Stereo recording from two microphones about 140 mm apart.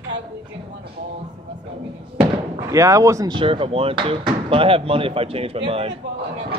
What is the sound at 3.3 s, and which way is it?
Speech, 40° right (ahead or behind).